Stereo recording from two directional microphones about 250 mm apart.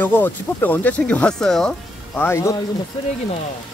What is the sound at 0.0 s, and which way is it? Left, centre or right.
Speech, centre.